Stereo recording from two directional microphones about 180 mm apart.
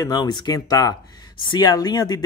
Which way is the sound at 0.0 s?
25° left (ahead or behind).